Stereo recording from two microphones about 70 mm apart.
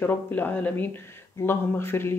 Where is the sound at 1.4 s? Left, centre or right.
Left.